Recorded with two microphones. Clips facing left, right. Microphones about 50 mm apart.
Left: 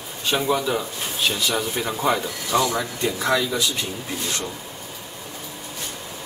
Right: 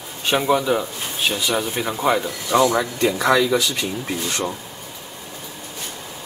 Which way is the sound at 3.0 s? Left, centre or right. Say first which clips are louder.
Right 5 dB; right.